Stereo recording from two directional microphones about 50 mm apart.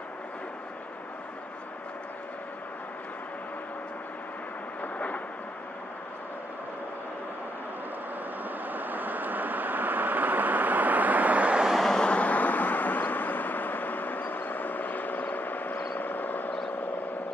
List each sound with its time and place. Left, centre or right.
4.8 s vehicle: left
8.6 s vehicle: right
11.8 s vehicle: centre
12.1 s vehicle: left